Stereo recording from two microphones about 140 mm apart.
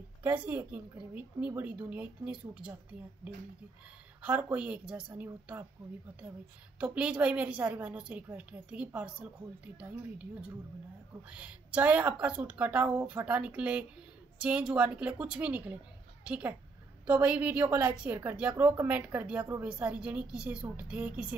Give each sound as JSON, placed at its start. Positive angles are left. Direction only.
{"t": 0.2, "sound": "a woman's voice", "side_deg": -10}
{"t": 4.2, "sound": "a woman's voice", "side_deg": -10}
{"t": 6.8, "sound": "a woman's voice", "side_deg": -10}